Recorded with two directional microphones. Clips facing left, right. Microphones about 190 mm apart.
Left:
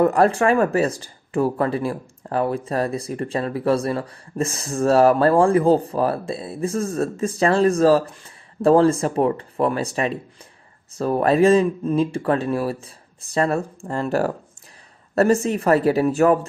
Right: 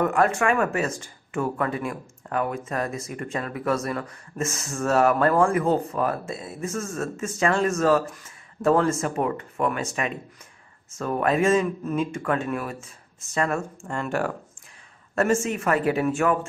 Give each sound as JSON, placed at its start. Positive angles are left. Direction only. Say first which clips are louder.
{"t": 0.0, "sound": "speech", "louder": "left 5 dB", "side_deg": 35}